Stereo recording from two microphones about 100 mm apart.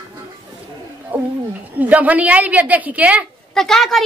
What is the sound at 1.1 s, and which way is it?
Speech, 15° right (ahead or behind).